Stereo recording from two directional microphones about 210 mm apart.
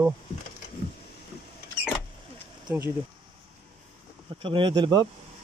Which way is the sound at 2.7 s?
10° right (ahead or behind).